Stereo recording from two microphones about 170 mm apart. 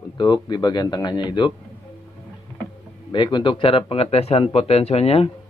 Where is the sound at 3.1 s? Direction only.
30° left (ahead or behind).